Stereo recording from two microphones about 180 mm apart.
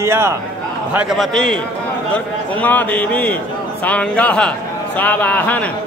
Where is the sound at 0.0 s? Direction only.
15° right (ahead or behind).